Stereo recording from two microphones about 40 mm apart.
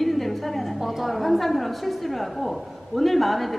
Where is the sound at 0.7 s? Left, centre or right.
Centre.